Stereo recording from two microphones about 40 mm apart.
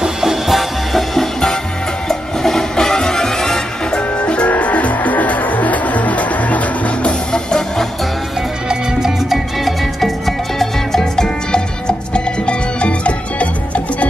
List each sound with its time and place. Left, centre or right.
0.0 s music: centre
2.0 s music: centre
4.2 s music: left
8.6 s music: centre
9.7 s music: centre
12.1 s music: left